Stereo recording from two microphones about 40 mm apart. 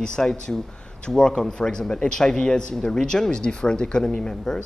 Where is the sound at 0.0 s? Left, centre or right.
Centre.